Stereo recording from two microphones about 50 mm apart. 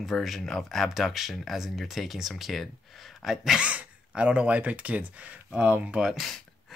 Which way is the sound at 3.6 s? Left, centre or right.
Right.